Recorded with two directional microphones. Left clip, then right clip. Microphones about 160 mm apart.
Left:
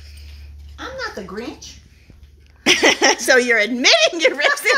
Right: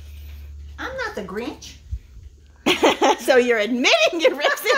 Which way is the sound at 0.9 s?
10° right (ahead or behind).